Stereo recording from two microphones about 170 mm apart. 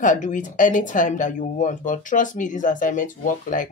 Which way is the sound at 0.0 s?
50° left (ahead or behind).